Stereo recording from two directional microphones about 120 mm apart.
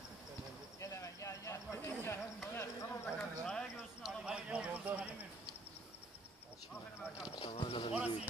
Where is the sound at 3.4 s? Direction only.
Centre (ahead or behind).